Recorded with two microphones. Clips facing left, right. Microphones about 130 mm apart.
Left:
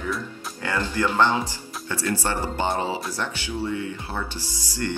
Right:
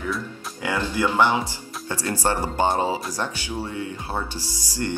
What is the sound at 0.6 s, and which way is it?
Speech, 15° right (ahead or behind).